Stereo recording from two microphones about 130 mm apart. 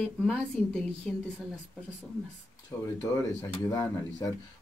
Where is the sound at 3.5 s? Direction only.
30° left (ahead or behind).